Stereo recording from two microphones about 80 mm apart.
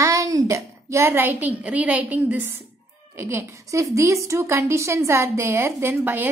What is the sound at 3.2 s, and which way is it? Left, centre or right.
Speech, right.